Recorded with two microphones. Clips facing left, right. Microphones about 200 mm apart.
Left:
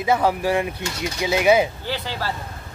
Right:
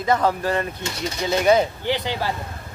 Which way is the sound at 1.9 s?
20° right (ahead or behind).